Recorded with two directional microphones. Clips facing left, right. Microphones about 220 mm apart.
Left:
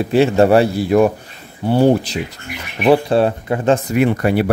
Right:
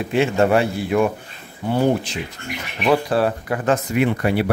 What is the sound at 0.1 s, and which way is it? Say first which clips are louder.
Speech: left 5 dB; 35° left (ahead or behind).